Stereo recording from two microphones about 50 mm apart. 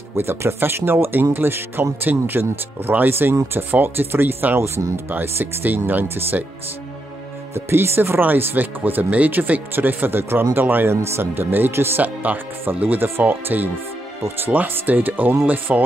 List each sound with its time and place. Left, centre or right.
0.1 s speech: right
4.7 s speech: right
5.1 s speech: right
7.5 s speech: right
10.9 s speech: right
12.0 s speech: right